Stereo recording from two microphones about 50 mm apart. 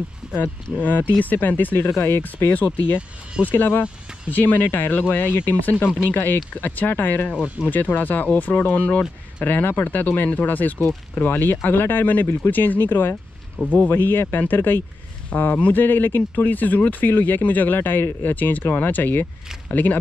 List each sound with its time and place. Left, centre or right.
0.2 s a sound: centre
0.7 s speech: left
2.0 s speech: left
2.2 s speech: left
9.4 s speech: left